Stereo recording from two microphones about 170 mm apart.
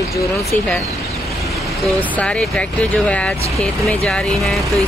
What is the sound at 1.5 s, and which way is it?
Speech, centre (ahead or behind).